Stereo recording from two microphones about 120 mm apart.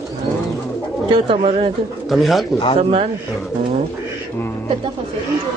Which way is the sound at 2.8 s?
60° right (ahead or behind).